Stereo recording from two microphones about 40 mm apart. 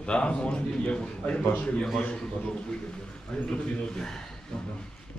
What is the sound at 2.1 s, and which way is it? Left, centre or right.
Speech, left.